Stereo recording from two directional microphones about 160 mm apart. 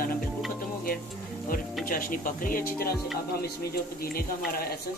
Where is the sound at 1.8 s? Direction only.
60° left (ahead or behind).